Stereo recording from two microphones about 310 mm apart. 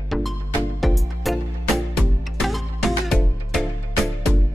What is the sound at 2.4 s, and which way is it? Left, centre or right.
Music, centre.